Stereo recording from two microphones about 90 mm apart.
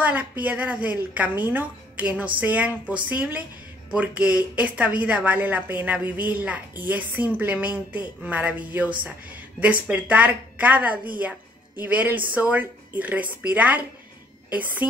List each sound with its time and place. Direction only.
0.0 s a woman's voice: 20° right (ahead or behind)